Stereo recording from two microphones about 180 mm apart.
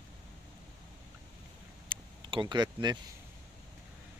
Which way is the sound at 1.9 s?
25° right (ahead or behind).